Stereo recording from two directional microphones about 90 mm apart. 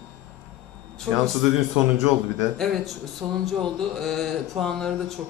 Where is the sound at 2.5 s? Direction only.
Centre (ahead or behind).